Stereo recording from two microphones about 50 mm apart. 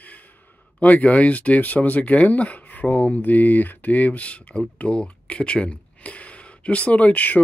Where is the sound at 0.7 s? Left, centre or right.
Left.